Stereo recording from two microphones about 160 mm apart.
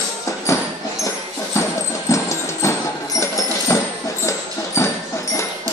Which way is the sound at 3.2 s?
20° left (ahead or behind).